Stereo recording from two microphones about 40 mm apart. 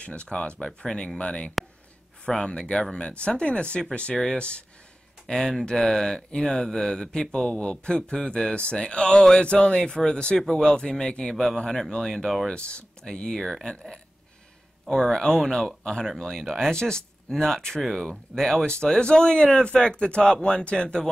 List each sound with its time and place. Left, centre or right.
0.0 s speech: left
0.7 s speech: centre
5.2 s speech: centre
12.5 s speech: left
13.4 s speech: centre
14.9 s speech: centre
18.7 s speech: left